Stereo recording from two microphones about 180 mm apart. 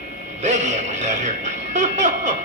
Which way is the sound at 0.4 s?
40° right (ahead or behind).